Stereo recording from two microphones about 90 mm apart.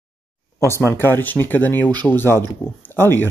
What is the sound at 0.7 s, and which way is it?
Speech, 30° left (ahead or behind).